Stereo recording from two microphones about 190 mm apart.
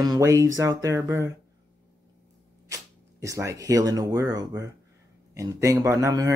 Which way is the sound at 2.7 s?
15° right (ahead or behind).